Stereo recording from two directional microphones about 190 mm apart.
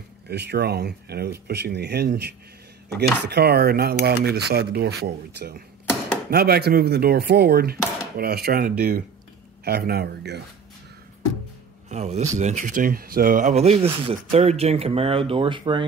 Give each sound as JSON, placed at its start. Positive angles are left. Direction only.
{"t": 0.3, "sound": "speech", "side_deg": -60}
{"t": 11.9, "sound": "a man's voice", "side_deg": -35}